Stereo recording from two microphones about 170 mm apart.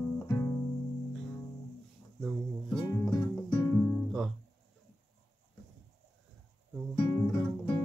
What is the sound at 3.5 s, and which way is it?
Music, 20° left (ahead or behind).